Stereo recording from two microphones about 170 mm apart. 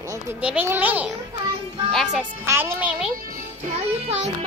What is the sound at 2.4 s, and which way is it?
Speech, 15° right (ahead or behind).